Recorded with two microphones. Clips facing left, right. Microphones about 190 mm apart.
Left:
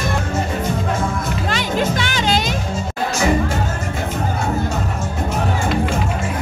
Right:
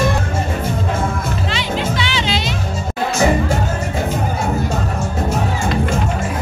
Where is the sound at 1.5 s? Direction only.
45° left (ahead or behind).